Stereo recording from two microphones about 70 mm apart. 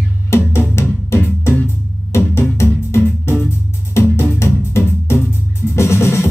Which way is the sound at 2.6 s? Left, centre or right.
Left.